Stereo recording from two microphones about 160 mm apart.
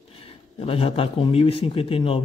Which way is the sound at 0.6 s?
35° left (ahead or behind).